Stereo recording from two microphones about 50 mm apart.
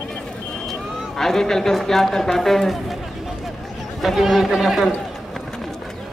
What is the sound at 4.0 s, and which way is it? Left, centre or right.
A man's voice, centre.